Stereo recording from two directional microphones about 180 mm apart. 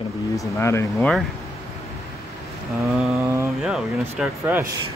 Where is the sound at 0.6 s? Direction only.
15° left (ahead or behind).